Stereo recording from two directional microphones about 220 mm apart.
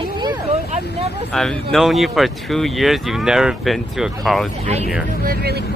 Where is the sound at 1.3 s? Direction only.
5° left (ahead or behind).